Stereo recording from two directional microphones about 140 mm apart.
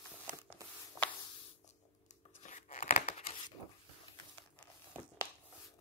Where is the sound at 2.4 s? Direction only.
65° left (ahead or behind).